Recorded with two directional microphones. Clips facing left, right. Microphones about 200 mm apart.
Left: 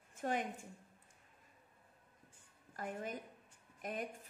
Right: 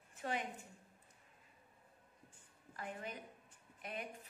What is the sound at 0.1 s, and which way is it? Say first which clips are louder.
Speech: left 3 dB; 45° left (ahead or behind).